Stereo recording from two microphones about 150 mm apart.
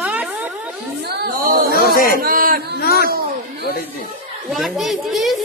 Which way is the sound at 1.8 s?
75° left (ahead or behind).